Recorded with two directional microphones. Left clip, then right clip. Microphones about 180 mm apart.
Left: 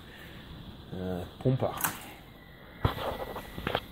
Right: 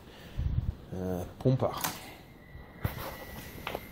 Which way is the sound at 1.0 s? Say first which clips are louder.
Right 1 dB; 15° right (ahead or behind).